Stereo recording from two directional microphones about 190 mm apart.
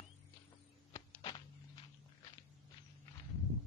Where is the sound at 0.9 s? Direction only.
25° left (ahead or behind).